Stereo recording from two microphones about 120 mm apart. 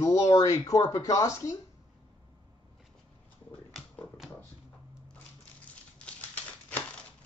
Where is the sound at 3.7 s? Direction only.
Centre (ahead or behind).